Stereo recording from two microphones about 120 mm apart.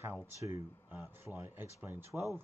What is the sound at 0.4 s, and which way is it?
A man's voice, 25° right (ahead or behind).